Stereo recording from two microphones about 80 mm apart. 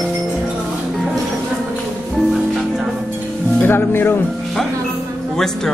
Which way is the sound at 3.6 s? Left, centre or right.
Left.